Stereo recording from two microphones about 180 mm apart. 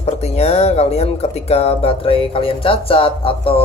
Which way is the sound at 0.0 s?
35° left (ahead or behind).